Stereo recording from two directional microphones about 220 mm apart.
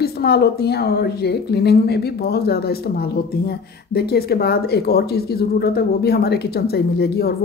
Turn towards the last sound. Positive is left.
turn(degrees=45)  # may be behind; listen again after turning